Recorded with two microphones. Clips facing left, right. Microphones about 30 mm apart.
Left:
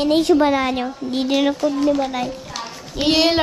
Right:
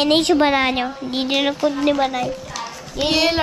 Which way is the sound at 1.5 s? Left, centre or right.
Right.